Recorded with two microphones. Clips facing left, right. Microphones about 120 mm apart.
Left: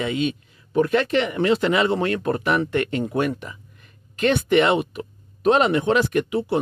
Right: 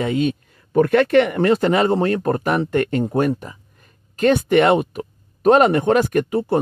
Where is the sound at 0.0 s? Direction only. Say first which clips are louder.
Right 4 dB; 45° right (ahead or behind).